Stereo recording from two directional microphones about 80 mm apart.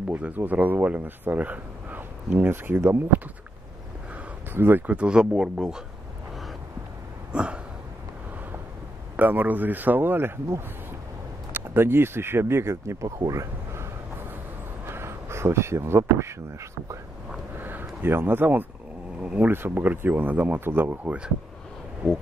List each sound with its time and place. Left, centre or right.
0.1 s speech: right
4.5 s speech: right; by 5.8 s centre
7.3 s a sound: centre
9.1 s speech: right
13.3 s a sound: right
14.9 s speech: right
17.6 s a sound: right
19.2 s speech: centre
19.5 s speech: right